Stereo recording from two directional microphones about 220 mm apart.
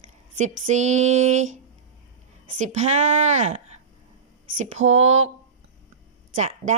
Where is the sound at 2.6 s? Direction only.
30° right (ahead or behind).